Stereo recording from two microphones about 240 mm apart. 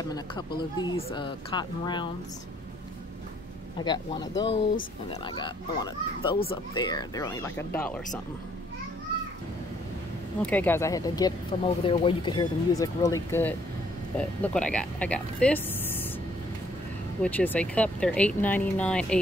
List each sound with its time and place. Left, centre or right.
0.1 s speech: centre
3.8 s speech: centre
10.4 s speech: centre
17.2 s speech: centre